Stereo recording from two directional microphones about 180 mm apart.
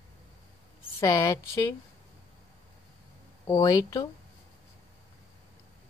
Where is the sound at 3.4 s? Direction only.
20° left (ahead or behind).